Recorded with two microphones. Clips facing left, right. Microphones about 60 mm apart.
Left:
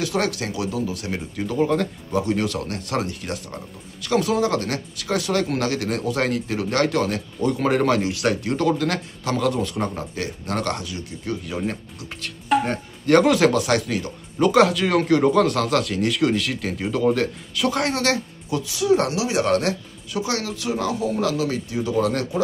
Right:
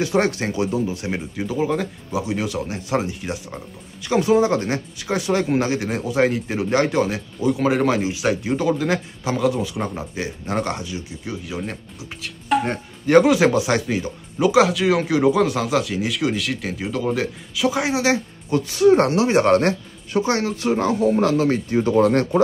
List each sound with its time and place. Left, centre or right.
0.0 s speech: right
1.3 s speech: centre
11.4 s speech: centre
14.5 s speech: centre
18.5 s speech: right